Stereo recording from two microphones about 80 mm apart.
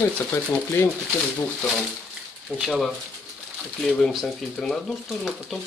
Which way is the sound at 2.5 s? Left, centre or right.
Centre.